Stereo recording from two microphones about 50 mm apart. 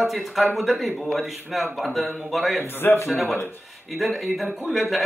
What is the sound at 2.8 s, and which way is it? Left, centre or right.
Speech, left.